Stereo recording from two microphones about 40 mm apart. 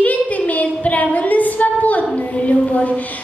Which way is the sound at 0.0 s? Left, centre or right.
Left.